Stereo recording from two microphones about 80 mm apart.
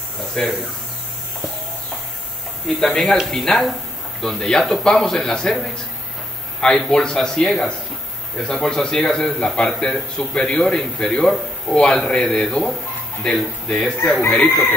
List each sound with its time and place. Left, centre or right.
0.3 s speech: centre
2.8 s a man's voice: centre
14.2 s speech: centre